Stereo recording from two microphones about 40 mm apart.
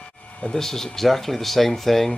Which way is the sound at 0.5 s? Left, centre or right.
Centre.